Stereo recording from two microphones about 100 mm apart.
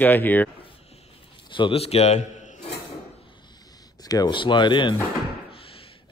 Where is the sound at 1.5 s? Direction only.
65° left (ahead or behind); by 2.1 s 90° left.